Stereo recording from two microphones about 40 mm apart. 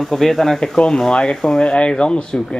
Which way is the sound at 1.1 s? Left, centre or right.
Left.